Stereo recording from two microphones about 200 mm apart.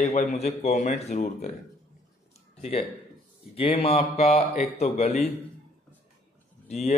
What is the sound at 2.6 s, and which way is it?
Speech, 30° left (ahead or behind).